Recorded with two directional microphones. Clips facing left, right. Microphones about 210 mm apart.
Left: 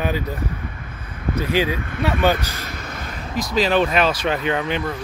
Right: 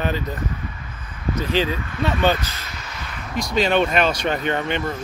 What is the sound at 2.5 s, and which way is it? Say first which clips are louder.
Vehicle: left 5 dB; 50° left (ahead or behind).